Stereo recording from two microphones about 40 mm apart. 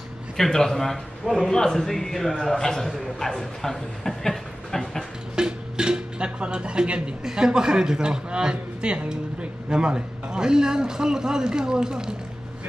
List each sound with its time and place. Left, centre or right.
0.4 s a man's voice: centre
1.5 s speech: centre
5.3 s speech: centre